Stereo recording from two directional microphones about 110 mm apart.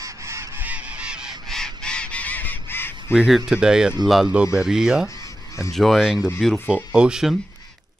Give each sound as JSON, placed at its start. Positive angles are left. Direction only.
{"t": 0.0, "sound": "goose", "side_deg": -25}
{"t": 0.6, "sound": "goose", "side_deg": -15}
{"t": 1.5, "sound": "honk", "side_deg": 5}
{"t": 3.1, "sound": "speech", "side_deg": -5}